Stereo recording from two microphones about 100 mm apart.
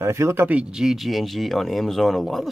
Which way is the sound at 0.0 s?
25° right (ahead or behind).